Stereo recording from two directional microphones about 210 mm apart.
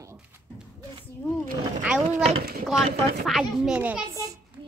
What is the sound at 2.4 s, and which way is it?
Speech, 45° right (ahead or behind).